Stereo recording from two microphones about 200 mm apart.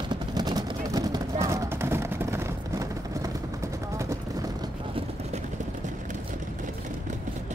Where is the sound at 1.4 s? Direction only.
15° right (ahead or behind).